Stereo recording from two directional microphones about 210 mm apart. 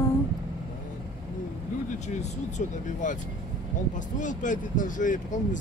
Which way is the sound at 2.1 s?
35° left (ahead or behind).